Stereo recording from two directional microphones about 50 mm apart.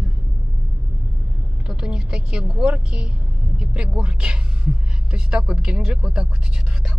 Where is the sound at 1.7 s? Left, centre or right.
Centre.